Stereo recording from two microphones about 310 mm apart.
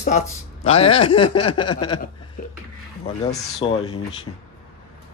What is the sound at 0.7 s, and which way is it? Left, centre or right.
Speech, centre.